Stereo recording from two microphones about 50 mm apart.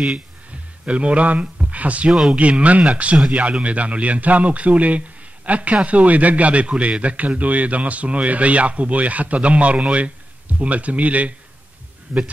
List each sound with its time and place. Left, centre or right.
0.8 s a man's voice: right
2.0 s a man's voice: centre
2.3 s a man's voice: right